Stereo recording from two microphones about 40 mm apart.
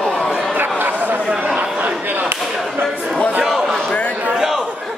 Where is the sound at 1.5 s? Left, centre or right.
Right.